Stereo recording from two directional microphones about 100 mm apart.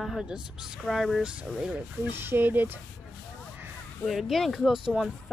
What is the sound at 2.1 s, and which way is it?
Speech, 20° right (ahead or behind).